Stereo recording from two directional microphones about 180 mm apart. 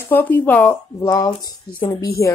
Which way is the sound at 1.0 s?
20° left (ahead or behind).